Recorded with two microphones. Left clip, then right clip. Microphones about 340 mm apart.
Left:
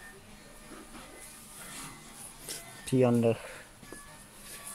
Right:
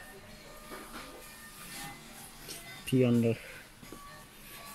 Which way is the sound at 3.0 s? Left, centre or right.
Left.